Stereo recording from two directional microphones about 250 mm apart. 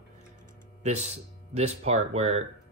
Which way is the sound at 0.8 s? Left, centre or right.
Right.